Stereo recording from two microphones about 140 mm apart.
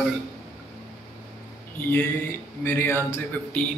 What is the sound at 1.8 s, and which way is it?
A man's voice, 10° left (ahead or behind).